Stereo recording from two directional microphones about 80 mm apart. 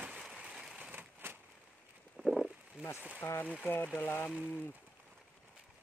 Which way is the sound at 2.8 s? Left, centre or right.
Centre.